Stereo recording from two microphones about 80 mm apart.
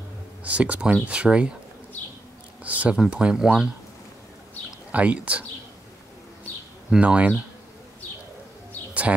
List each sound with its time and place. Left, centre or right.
0.4 s speech: centre
2.6 s speech: centre
4.9 s speech: centre
6.9 s speech: centre